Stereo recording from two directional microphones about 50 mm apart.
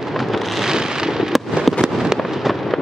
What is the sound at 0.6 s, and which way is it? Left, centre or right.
Fireworks, centre.